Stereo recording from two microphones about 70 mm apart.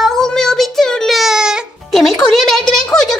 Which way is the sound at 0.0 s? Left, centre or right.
Centre.